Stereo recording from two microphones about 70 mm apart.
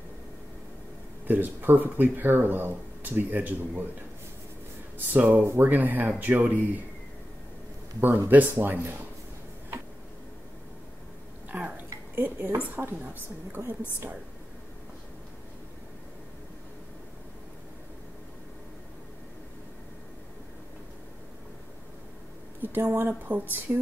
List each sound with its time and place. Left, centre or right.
1.2 s speech: right
4.9 s speech: right
8.3 s speech: right
11.5 s a woman's voice: right
22.6 s speech: right